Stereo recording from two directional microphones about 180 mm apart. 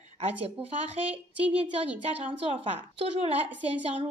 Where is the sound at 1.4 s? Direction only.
10° right (ahead or behind).